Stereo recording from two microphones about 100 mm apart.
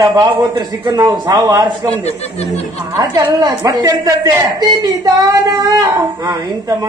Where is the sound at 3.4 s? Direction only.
40° right (ahead or behind).